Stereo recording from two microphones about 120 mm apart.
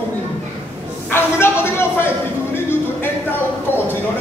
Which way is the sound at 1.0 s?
20° left (ahead or behind).